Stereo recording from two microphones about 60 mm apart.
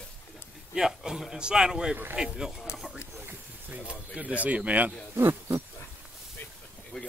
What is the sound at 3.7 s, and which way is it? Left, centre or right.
Speech, centre.